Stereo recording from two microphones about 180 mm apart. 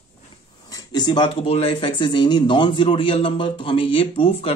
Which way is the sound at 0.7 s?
20° left (ahead or behind).